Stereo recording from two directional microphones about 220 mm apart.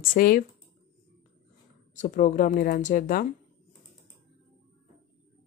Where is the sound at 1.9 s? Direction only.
35° left (ahead or behind).